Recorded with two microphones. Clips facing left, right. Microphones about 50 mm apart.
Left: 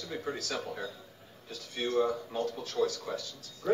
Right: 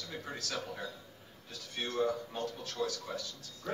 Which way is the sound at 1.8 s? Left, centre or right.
Centre.